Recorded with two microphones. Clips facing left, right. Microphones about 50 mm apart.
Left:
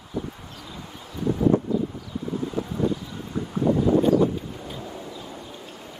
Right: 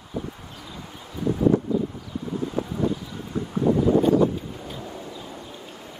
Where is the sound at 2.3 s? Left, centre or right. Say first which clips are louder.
Right 1 dB; centre.